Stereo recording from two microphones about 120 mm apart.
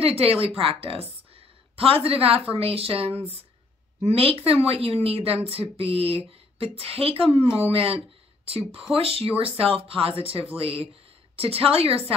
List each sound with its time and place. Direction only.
0.0 s speech: 55° right (ahead or behind)
1.3 s a sound: 55° right (ahead or behind)
2.5 s speech: 55° right (ahead or behind)